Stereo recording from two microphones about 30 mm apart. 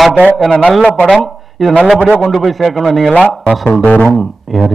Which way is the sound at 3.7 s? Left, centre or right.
Left.